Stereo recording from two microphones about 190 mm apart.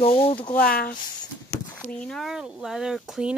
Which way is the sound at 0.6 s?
50° left (ahead or behind).